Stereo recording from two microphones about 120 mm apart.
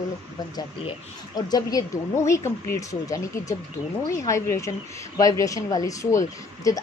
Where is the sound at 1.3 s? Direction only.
35° left (ahead or behind).